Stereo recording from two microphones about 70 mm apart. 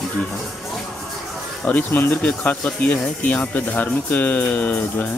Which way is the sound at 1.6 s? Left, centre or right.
Left.